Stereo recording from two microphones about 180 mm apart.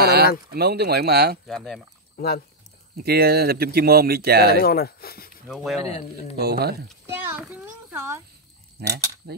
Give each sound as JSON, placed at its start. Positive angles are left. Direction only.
{"t": 0.0, "sound": "a sound", "side_deg": -60}
{"t": 0.5, "sound": "speech", "side_deg": -60}
{"t": 1.5, "sound": "speech", "side_deg": 0}
{"t": 2.1, "sound": "speech", "side_deg": 60}
{"t": 3.0, "sound": "speech", "side_deg": -60}
{"t": 4.6, "sound": "speech", "side_deg": 60}
{"t": 5.5, "sound": "speech", "side_deg": 0}
{"t": 5.9, "sound": "speech", "side_deg": 35}
{"t": 6.3, "sound": "speech", "side_deg": -60}
{"t": 7.1, "sound": "a child's voice", "side_deg": -10}
{"t": 8.8, "sound": "speech", "side_deg": -60}